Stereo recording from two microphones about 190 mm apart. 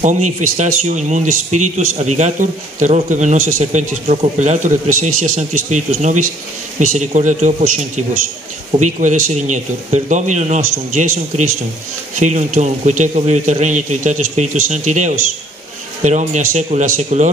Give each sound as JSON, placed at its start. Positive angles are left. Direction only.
{"t": 0.0, "sound": "speech", "side_deg": -40}
{"t": 12.2, "sound": "speech", "side_deg": -40}